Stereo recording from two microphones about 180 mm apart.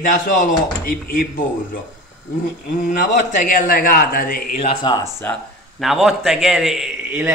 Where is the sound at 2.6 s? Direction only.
45° left (ahead or behind).